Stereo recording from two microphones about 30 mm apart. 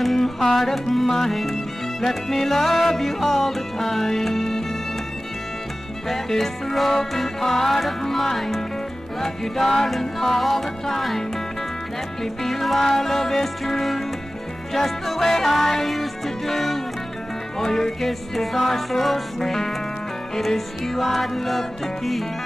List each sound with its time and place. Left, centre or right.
0.0 s music: centre
6.0 s music: centre